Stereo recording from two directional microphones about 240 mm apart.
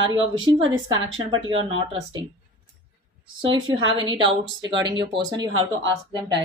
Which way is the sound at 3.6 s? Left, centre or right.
Right.